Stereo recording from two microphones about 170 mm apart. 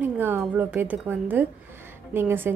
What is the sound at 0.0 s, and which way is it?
Speech, 10° right (ahead or behind).